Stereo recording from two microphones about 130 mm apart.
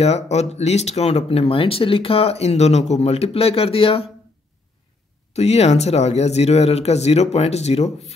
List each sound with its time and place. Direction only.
0.0 s speech: 55° left (ahead or behind)
5.3 s speech: 55° left (ahead or behind)